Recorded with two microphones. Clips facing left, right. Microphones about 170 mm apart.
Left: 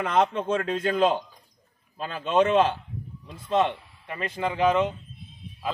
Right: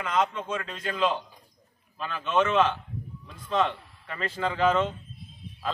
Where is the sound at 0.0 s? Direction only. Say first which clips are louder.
Left 4 dB; 60° left (ahead or behind).